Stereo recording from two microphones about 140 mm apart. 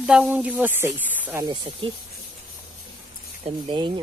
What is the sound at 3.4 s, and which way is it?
Speech, 35° right (ahead or behind).